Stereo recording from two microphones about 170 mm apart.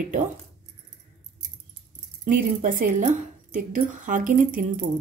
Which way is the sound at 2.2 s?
50° right (ahead or behind).